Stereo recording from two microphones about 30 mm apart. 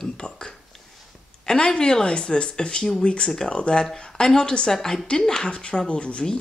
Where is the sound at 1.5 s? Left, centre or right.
Left.